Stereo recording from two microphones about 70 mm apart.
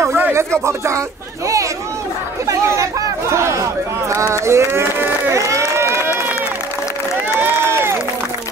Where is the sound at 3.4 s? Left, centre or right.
Right.